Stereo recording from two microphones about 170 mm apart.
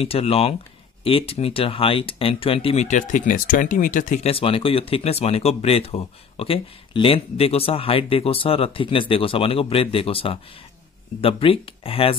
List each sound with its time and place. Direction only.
0.0 s speech: 35° left (ahead or behind)
4.3 s speech: 35° left (ahead or behind)